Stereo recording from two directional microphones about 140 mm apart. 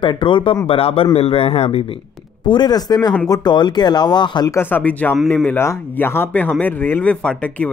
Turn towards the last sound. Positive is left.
turn(degrees=10)  # may be behind; listen again after turning